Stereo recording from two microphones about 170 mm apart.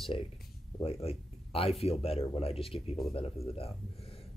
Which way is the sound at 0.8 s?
35° left (ahead or behind).